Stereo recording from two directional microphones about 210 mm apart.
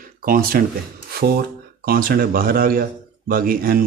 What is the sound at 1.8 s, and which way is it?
A man's voice, 45° right (ahead or behind).